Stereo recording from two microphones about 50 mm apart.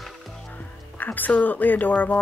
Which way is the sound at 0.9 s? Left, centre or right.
Left.